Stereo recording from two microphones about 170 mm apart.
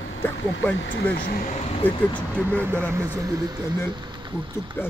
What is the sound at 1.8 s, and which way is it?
Speech, 10° left (ahead or behind).